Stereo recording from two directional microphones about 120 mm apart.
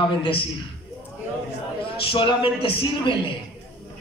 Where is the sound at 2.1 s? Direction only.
45° left (ahead or behind).